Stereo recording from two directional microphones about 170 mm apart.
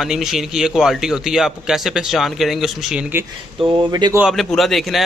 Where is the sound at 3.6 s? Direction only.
20° right (ahead or behind).